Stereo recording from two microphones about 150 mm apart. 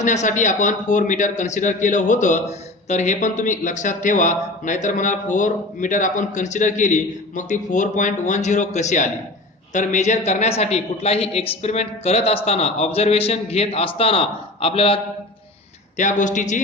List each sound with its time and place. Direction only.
0.0 s a man's voice: 50° left (ahead or behind)
16.0 s a man's voice: 55° left (ahead or behind)